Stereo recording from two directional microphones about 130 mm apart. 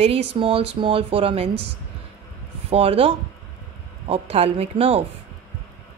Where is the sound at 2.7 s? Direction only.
50° right (ahead or behind).